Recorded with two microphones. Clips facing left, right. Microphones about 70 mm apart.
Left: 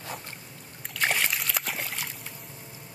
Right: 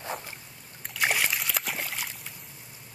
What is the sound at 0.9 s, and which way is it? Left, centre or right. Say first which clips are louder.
Slosh: even; centre.